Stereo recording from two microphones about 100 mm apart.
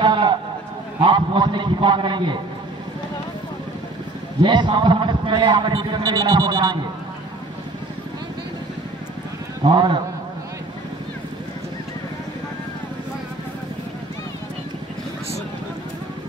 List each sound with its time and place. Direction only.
0.0 s a sound: 50° right (ahead or behind)
1.0 s a man's voice: 50° right (ahead or behind)
4.4 s a man's voice: 55° right (ahead or behind)
9.6 s a man's voice: 50° right (ahead or behind)